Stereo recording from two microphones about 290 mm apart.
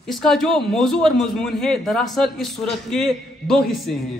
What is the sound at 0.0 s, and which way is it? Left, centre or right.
A woman's voice, centre.